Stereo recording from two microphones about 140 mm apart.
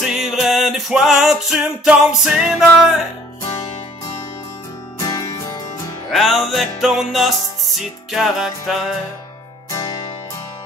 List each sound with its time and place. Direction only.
0.0 s music: centre (ahead or behind)
4.9 s music: 25° left (ahead or behind)
6.0 s music: centre (ahead or behind)
9.7 s music: 25° left (ahead or behind)